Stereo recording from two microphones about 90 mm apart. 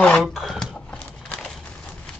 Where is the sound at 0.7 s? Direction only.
10° left (ahead or behind).